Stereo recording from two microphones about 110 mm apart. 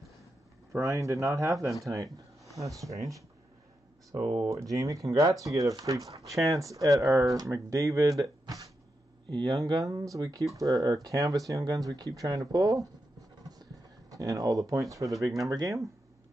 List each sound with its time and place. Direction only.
0.7 s speech: 30° right (ahead or behind)
4.3 s speech: 30° right (ahead or behind)
13.4 s a sound: 35° right (ahead or behind)
14.1 s speech: 30° right (ahead or behind)